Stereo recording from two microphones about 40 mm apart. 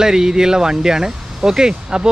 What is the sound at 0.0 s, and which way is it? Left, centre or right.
Speech, centre.